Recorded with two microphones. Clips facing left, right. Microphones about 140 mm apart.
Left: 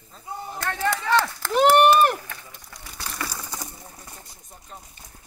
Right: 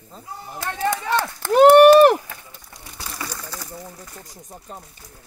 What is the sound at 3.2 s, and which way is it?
Bird, 10° left (ahead or behind).